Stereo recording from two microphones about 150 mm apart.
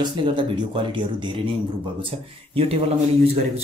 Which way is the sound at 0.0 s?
30° right (ahead or behind).